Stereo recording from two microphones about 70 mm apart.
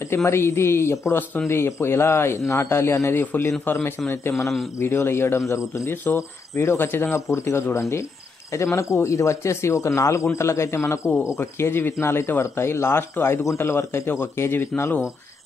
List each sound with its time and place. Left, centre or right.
0.1 s speech: left
11.3 s speech: left